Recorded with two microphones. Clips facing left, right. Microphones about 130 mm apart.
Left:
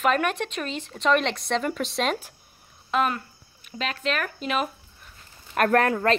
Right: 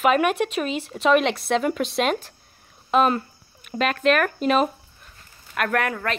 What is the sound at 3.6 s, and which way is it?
Speech, 55° right (ahead or behind).